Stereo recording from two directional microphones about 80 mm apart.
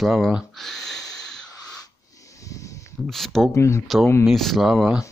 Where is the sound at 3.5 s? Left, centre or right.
Left.